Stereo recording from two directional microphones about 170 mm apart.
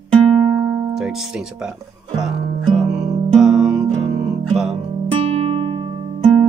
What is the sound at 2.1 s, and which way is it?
Music, 5° right (ahead or behind).